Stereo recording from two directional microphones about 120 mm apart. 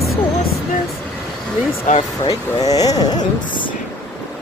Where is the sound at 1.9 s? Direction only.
90° left.